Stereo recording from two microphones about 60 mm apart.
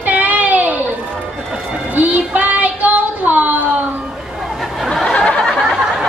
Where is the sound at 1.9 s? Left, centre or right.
Right.